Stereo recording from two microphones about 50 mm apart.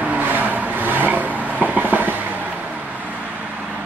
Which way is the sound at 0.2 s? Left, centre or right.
Right.